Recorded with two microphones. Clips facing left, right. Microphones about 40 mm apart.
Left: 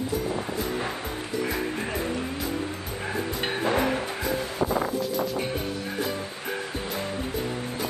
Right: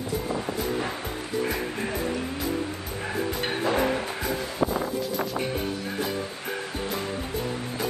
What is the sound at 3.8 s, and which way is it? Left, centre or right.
Bow-wow, centre.